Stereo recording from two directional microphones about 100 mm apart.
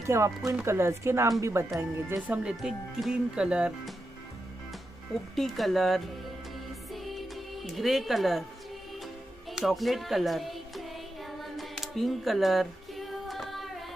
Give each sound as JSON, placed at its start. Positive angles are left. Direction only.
{"t": 0.0, "sound": "speech", "side_deg": -30}
{"t": 5.3, "sound": "speech", "side_deg": 0}
{"t": 6.9, "sound": "music", "side_deg": 0}
{"t": 9.5, "sound": "speech", "side_deg": 0}
{"t": 11.3, "sound": "a sound", "side_deg": 0}